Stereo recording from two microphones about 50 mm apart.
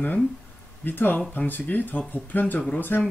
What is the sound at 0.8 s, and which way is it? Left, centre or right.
Speech, left.